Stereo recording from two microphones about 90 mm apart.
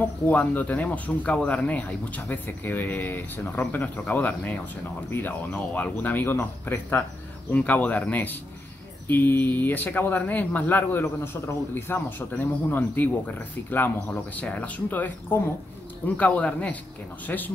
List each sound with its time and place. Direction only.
0.0 s speech: 15° left (ahead or behind)